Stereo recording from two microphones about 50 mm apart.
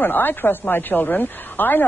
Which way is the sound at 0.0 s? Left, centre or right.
Left.